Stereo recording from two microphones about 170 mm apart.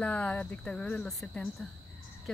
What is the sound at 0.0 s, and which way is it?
Speech, 10° left (ahead or behind).